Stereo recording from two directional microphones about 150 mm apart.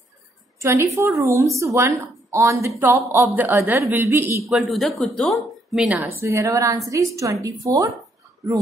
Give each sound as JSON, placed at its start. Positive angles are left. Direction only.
{"t": 0.6, "sound": "a woman's voice", "side_deg": -20}
{"t": 4.5, "sound": "a woman's voice", "side_deg": 0}
{"t": 6.0, "sound": "a woman's voice", "side_deg": -20}